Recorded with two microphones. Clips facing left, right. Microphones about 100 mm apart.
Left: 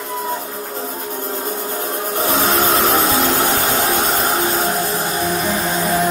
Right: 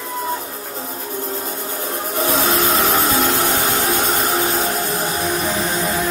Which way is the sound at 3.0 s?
50° left (ahead or behind).